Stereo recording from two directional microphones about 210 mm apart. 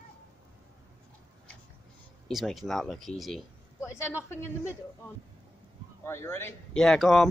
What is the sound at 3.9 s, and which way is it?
Speech, 10° left (ahead or behind).